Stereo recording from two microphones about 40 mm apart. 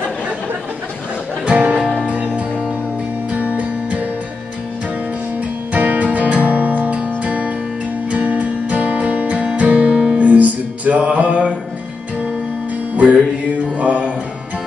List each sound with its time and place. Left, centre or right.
1.4 s music: right
3.3 s music: right
5.7 s music: right
12.9 s music: right